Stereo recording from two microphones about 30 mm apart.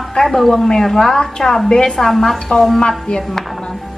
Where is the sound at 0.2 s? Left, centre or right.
Centre.